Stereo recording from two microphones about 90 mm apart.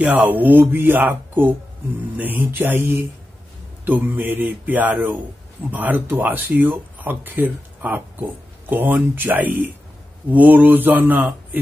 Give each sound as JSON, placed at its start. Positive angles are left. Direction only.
{"t": 0.0, "sound": "speech", "side_deg": -20}